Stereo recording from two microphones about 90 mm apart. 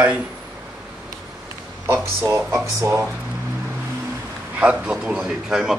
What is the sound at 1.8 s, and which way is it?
Speech, 30° right (ahead or behind).